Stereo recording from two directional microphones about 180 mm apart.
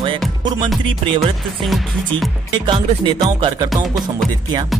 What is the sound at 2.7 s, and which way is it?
Speech, 25° right (ahead or behind).